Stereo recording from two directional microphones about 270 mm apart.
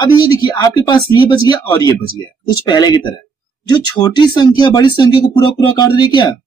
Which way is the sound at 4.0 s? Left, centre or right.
Centre.